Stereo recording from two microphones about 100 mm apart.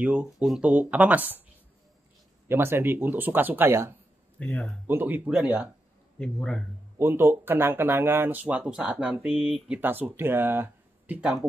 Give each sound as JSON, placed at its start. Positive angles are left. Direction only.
{"t": 0.0, "sound": "speech", "side_deg": -15}
{"t": 2.4, "sound": "speech", "side_deg": -25}
{"t": 4.4, "sound": "speech", "side_deg": 10}
{"t": 4.8, "sound": "speech", "side_deg": -20}
{"t": 6.1, "sound": "speech", "side_deg": 10}
{"t": 7.0, "sound": "speech", "side_deg": -20}